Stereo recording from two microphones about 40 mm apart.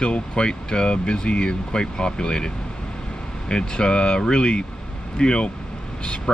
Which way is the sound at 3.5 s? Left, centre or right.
Left.